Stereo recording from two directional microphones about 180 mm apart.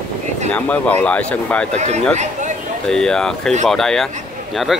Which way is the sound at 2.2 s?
40° right (ahead or behind).